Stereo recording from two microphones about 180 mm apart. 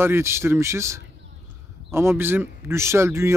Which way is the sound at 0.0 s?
15° right (ahead or behind).